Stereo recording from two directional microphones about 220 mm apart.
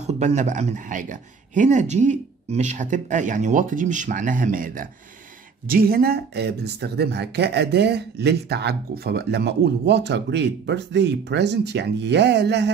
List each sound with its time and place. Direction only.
0.0 s speech: 30° right (ahead or behind); by 12.7 s 50° right (ahead or behind)